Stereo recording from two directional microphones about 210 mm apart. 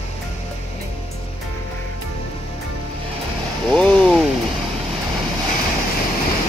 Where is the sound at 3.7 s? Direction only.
5° left (ahead or behind).